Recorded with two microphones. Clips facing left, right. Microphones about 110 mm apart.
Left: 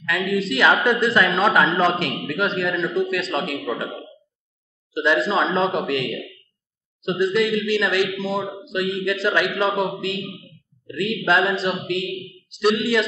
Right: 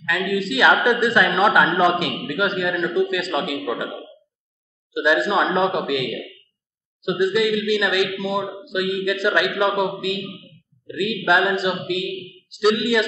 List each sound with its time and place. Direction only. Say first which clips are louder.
0.0 s a man's voice: even; centre (ahead or behind)